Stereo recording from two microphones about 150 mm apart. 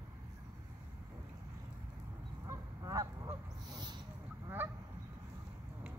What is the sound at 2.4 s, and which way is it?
Honk, 25° right (ahead or behind).